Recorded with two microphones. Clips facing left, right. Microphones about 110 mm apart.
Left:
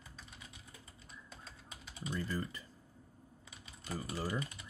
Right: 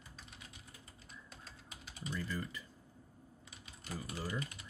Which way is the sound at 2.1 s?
35° left (ahead or behind).